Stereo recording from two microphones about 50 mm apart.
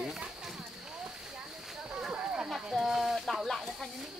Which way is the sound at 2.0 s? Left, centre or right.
Centre.